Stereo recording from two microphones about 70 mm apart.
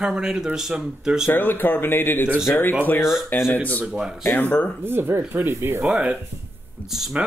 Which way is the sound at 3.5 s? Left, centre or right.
Left.